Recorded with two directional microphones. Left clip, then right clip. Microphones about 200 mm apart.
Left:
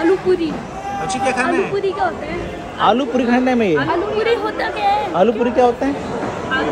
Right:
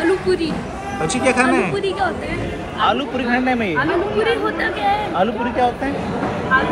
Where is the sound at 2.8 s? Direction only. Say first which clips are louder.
Left 3 dB; 50° left (ahead or behind).